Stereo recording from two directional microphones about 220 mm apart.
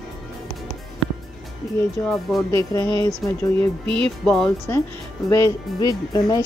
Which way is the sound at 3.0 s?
25° right (ahead or behind).